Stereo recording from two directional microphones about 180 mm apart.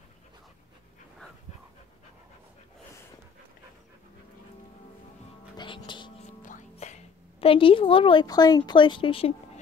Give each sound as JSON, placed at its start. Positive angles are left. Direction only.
{"t": 5.6, "sound": "music", "side_deg": 25}
{"t": 6.4, "sound": "speech", "side_deg": 40}